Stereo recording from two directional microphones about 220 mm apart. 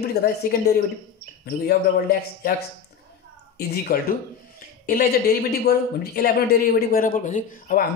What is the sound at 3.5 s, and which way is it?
Speech, 45° left (ahead or behind).